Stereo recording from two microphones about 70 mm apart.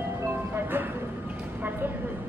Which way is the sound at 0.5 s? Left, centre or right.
Right.